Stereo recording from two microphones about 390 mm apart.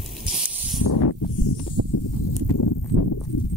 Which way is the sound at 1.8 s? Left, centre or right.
Right.